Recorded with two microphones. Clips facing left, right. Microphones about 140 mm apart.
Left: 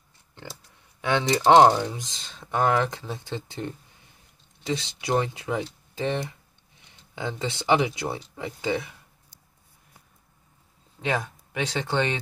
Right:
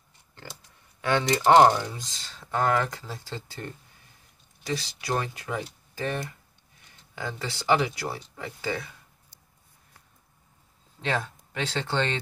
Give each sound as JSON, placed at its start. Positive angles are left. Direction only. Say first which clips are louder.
{"t": 0.3, "sound": "a sound", "louder": "left 3 dB", "side_deg": 20}
{"t": 1.0, "sound": "speech", "louder": "left 1 dB", "side_deg": 20}
{"t": 11.0, "sound": "speech", "louder": "left 2 dB", "side_deg": 10}